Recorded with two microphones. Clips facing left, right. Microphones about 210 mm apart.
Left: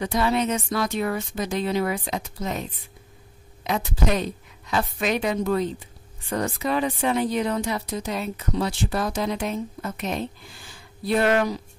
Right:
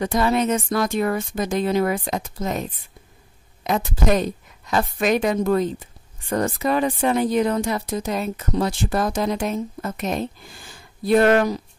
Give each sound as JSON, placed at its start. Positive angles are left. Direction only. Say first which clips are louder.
{"t": 0.0, "sound": "speech", "louder": "right 3 dB", "side_deg": -45}
{"t": 3.6, "sound": "speech", "louder": "right 4 dB", "side_deg": -45}